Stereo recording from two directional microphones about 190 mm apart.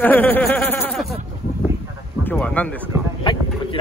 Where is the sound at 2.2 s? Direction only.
5° left (ahead or behind).